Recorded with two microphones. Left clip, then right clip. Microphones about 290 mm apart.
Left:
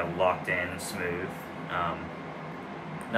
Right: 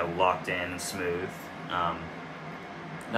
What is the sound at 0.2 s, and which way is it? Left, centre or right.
Speech, centre.